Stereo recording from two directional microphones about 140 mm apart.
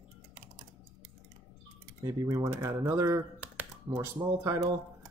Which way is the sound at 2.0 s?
25° right (ahead or behind).